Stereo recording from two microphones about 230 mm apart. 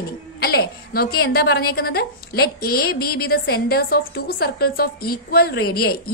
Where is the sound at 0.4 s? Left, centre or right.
Left.